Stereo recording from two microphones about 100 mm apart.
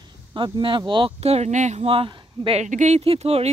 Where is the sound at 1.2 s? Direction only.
90° right.